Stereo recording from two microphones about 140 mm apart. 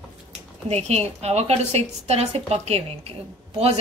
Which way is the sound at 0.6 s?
50° right (ahead or behind).